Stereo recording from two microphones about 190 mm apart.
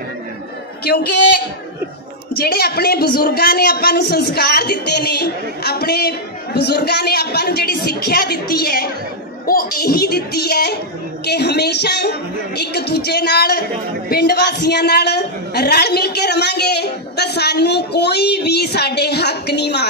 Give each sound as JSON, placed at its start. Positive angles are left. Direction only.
{"t": 0.8, "sound": "a woman's voice", "side_deg": 55}
{"t": 2.3, "sound": "a woman's voice", "side_deg": 55}